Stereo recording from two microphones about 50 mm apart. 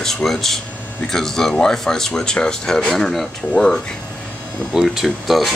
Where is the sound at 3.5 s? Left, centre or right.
Centre.